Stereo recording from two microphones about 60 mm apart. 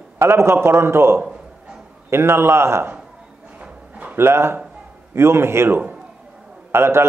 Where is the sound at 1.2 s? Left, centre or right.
Centre.